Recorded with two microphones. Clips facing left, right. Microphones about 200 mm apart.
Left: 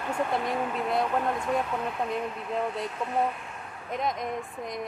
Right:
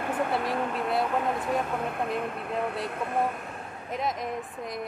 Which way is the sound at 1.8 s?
55° right (ahead or behind).